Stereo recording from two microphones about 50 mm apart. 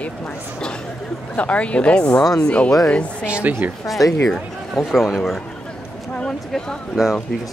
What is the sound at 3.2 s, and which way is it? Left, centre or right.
Speech, right.